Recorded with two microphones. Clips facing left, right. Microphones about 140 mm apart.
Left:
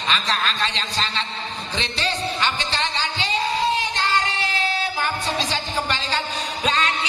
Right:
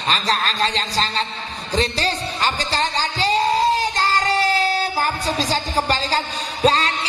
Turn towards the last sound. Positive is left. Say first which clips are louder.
# right 5 dB
turn(degrees=-35)  # may be behind; listen again after turning